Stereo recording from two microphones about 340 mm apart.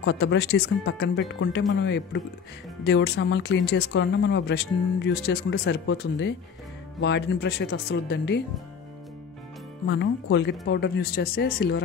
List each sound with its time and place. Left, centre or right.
0.0 s speech: left
9.8 s speech: left